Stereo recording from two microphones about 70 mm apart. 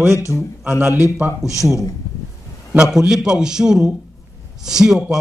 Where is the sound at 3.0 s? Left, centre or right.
Centre.